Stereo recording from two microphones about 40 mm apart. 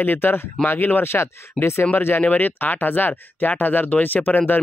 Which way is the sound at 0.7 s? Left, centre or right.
Left.